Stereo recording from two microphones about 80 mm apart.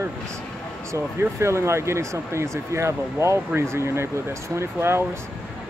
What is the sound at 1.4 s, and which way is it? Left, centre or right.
Speech, right.